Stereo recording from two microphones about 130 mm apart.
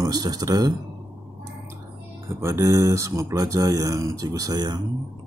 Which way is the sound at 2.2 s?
20° right (ahead or behind).